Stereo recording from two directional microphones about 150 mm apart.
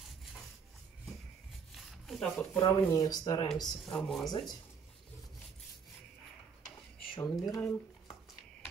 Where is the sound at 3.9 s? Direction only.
5° left (ahead or behind).